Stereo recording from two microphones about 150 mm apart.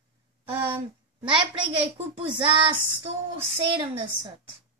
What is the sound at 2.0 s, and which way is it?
Speech, 40° right (ahead or behind).